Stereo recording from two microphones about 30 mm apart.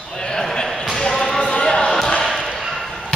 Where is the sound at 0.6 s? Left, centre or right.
Centre.